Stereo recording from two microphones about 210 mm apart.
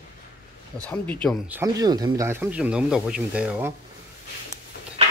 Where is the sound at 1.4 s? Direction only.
10° right (ahead or behind).